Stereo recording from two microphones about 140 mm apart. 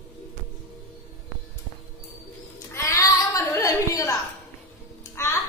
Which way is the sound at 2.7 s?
20° left (ahead or behind).